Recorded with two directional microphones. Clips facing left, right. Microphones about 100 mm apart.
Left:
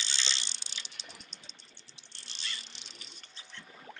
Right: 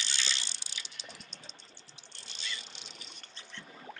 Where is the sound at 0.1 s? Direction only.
25° left (ahead or behind).